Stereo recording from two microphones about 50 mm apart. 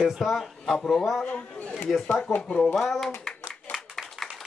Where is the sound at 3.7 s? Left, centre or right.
Centre.